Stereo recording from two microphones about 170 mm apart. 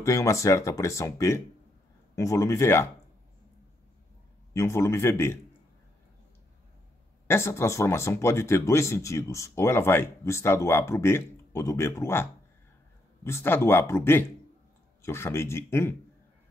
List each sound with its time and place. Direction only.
0.0 s speech: 20° left (ahead or behind)
4.6 s speech: 15° left (ahead or behind)
7.2 s speech: 15° left (ahead or behind)